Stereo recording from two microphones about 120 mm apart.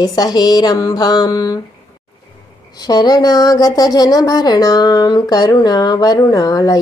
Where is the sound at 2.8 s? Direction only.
35° left (ahead or behind).